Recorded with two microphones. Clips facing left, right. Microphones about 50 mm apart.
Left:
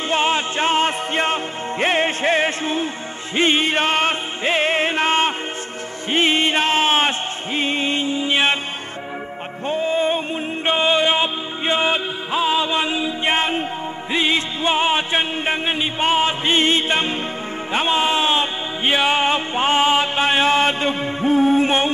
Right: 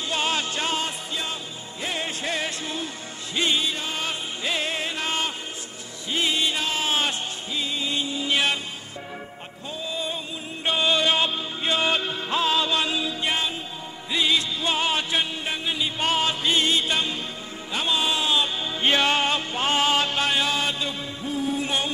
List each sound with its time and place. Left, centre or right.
0.1 s music: left
9.7 s music: left
13.3 s music: left
14.1 s music: left
16.0 s music: left
18.9 s music: centre; by 21.9 s left